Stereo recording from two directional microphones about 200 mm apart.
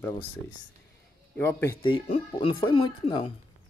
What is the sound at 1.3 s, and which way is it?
Speech, 10° left (ahead or behind).